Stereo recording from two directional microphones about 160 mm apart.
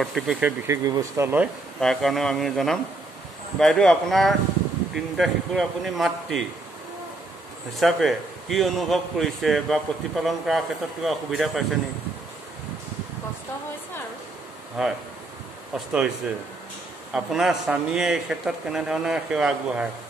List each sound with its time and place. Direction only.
0.0 s a man's voice: centre (ahead or behind)
1.8 s a man's voice: centre (ahead or behind)
7.7 s a man's voice: centre (ahead or behind)
14.8 s a man's voice: 5° right (ahead or behind)
17.1 s a man's voice: centre (ahead or behind)